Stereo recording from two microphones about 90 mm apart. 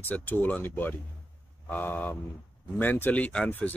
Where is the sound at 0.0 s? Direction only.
20° left (ahead or behind).